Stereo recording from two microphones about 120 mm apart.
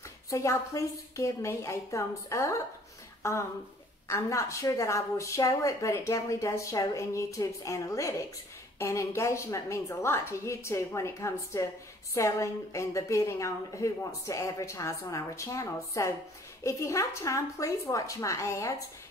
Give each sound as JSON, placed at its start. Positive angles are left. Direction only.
{"t": 0.3, "sound": "a woman's voice", "side_deg": 25}